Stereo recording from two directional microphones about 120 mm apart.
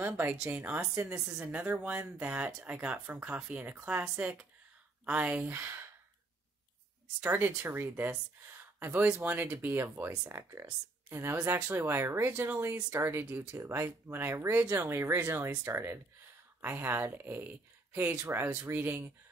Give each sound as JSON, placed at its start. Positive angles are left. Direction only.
{"t": 0.0, "sound": "speech", "side_deg": -15}
{"t": 7.2, "sound": "speech", "side_deg": -15}
{"t": 8.7, "sound": "a sound", "side_deg": -20}
{"t": 9.0, "sound": "speech", "side_deg": -15}